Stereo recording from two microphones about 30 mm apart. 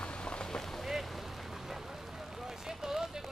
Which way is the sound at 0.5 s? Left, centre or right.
Centre.